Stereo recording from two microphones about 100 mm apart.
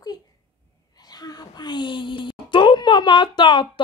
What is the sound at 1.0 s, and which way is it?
Speech, 40° left (ahead or behind).